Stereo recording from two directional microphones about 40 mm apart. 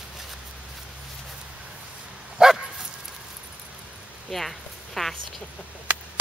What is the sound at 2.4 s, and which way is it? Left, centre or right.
Dog, centre.